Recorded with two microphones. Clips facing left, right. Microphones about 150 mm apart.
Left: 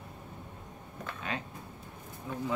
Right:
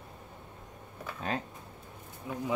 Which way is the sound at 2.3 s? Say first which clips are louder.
Right 1 dB; 10° right (ahead or behind).